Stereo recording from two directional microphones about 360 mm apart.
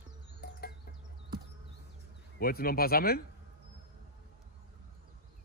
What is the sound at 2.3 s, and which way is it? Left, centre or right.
Speech, left.